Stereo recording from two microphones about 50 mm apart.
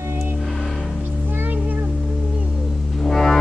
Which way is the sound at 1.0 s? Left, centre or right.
Right.